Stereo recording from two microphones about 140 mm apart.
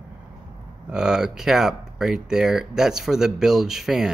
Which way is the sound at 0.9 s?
5° right (ahead or behind).